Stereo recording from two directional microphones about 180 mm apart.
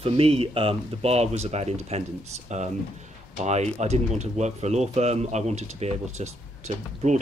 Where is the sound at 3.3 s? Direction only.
40° right (ahead or behind).